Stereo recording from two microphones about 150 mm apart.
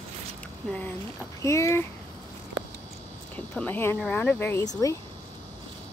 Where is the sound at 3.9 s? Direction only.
10° left (ahead or behind).